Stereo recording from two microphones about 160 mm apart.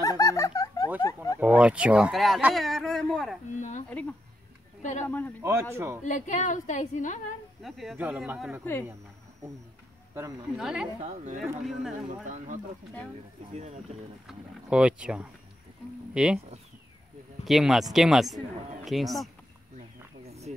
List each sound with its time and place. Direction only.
0.0 s giggle: 20° left (ahead or behind)
1.0 s a sound: 20° left (ahead or behind)
1.4 s speech: 10° right (ahead or behind)
5.0 s a man's voice: 10° left (ahead or behind)
5.4 s speech: 15° right (ahead or behind)
6.0 s a woman's voice: 50° left (ahead or behind)
7.6 s speech: centre (ahead or behind)
10.5 s speech: 5° right (ahead or behind)
11.0 s speech: 50° right (ahead or behind)
11.6 s speech: centre (ahead or behind)
12.1 s speech: 45° right (ahead or behind)
14.2 s speech: 5° right (ahead or behind)
17.5 s speech: centre (ahead or behind)
20.2 s a sound: 40° right (ahead or behind)